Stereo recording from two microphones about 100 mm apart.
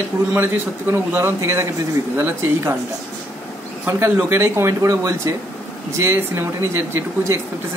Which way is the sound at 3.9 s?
20° right (ahead or behind).